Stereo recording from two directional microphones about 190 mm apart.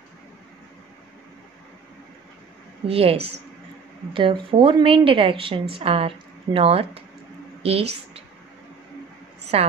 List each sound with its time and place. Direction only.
2.9 s a woman's voice: 30° right (ahead or behind)
9.5 s speech: 30° right (ahead or behind)